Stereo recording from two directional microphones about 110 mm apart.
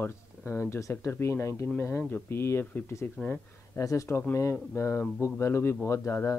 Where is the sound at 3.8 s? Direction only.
30° left (ahead or behind).